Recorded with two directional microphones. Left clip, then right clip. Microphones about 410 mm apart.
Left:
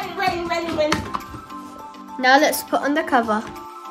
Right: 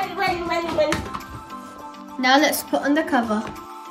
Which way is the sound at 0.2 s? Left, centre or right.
Right.